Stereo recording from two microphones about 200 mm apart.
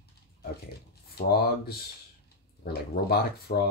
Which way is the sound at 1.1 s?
50° left (ahead or behind).